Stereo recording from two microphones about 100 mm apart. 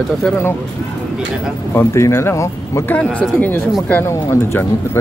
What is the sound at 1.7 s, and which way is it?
Speech, 25° left (ahead or behind).